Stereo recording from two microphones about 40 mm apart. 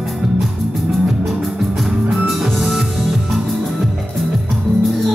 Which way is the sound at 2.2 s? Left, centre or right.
Centre.